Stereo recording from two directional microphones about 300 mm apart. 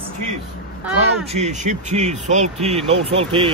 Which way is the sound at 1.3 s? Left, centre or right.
Right.